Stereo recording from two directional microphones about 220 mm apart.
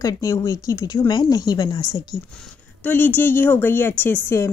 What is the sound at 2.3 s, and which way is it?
Speech, 5° left (ahead or behind).